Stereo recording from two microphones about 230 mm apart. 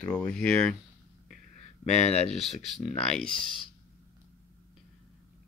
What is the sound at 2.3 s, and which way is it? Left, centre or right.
Speech, centre.